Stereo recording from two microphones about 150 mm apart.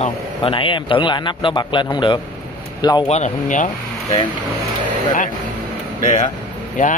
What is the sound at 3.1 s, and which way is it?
Speech, 55° left (ahead or behind).